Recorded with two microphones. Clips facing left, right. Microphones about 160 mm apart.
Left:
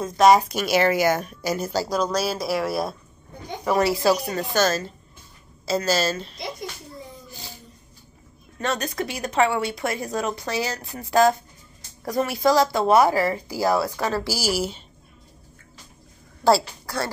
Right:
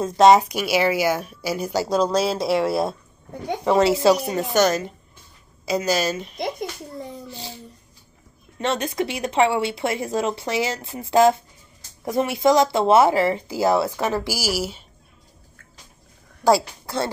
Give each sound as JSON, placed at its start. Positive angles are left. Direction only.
{"t": 0.0, "sound": "a woman's voice", "side_deg": -25}
{"t": 1.7, "sound": "a woman's voice", "side_deg": -25}
{"t": 7.2, "sound": "a sound", "side_deg": -25}
{"t": 8.5, "sound": "speech", "side_deg": -25}
{"t": 16.4, "sound": "speech", "side_deg": -20}